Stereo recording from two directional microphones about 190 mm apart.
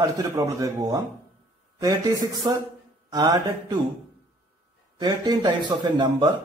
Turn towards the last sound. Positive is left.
turn(degrees=-25)  # may be behind; listen again after turning